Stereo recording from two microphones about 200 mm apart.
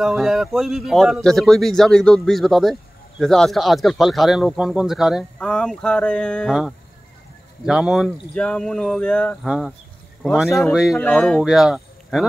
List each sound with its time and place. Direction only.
0.0 s speech: centre (ahead or behind)